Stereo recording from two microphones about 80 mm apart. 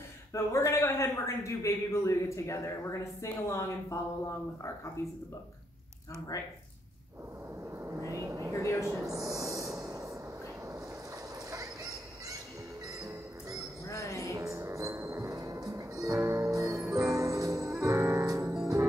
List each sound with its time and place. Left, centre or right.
0.3 s a man's voice: left
6.3 s speech: left
8.0 s vehicle: right
8.8 s snort: right
11.5 s a sound: right
13.8 s music: left
14.5 s music: right